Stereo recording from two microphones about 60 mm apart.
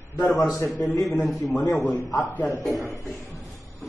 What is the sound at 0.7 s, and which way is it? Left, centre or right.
Speech, left.